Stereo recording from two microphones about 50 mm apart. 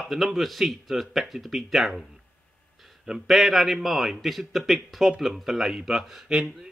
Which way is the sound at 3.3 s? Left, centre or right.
Centre.